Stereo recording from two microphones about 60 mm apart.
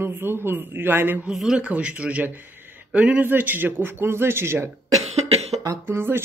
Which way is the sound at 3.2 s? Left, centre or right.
Right.